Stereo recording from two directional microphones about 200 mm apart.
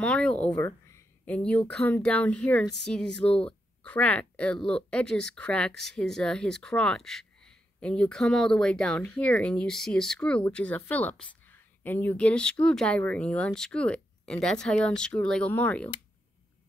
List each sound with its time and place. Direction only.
0.0 s speech: 5° left (ahead or behind)